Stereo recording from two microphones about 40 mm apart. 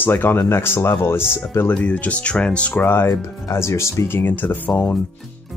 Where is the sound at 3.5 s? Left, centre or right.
Left.